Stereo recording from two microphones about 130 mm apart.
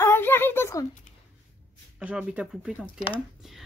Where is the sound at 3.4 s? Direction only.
Centre (ahead or behind).